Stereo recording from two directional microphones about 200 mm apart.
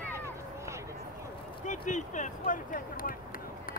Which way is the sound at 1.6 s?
40° left (ahead or behind).